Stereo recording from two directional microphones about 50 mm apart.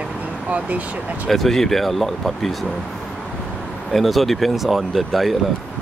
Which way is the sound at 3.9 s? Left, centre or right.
Centre.